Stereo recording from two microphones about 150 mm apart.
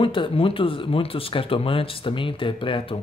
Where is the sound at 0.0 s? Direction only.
35° left (ahead or behind).